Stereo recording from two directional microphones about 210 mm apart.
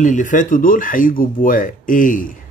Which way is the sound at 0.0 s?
35° left (ahead or behind).